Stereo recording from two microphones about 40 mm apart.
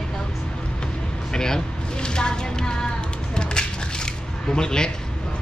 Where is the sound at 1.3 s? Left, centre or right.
Centre.